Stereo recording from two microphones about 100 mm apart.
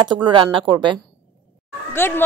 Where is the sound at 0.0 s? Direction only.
50° right (ahead or behind).